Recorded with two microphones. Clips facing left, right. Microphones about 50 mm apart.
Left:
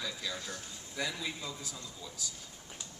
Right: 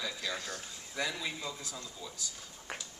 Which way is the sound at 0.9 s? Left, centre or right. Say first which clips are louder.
Right 1 dB; centre.